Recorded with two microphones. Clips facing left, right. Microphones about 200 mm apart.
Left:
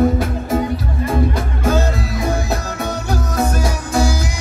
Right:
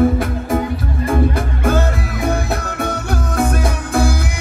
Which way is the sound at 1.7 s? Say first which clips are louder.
Even; 55° right (ahead or behind).